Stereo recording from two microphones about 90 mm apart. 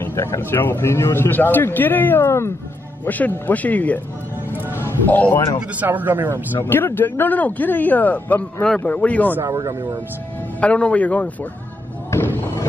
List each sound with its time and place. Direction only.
0.0 s speech: 25° left (ahead or behind)
4.7 s a sound: 25° left (ahead or behind)
5.8 s speech: 20° right (ahead or behind)
6.5 s speech: 25° left (ahead or behind)
9.5 s speech: 35° right (ahead or behind)
10.6 s speech: 15° left (ahead or behind)